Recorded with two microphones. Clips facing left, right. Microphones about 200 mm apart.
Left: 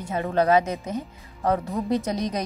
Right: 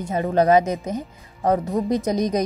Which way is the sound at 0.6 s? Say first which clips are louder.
Right 3 dB; 45° right (ahead or behind).